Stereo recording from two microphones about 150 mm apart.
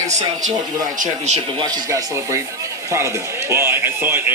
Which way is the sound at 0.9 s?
50° right (ahead or behind).